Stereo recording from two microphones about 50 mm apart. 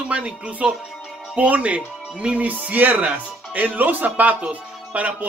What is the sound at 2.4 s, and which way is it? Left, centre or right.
Speech, right.